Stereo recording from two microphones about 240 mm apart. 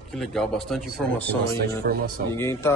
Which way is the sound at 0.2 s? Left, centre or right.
Centre.